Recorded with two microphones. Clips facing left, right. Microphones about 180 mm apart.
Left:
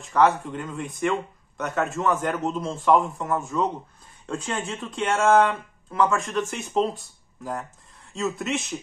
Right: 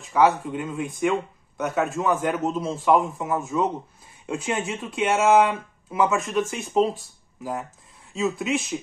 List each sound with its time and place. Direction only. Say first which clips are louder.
0.0 s a man's voice: right 1 dB; 5° right (ahead or behind)